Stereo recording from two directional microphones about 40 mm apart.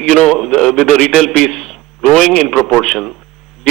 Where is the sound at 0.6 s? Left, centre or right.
Left.